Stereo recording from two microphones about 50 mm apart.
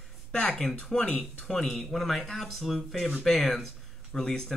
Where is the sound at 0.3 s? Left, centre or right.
Centre.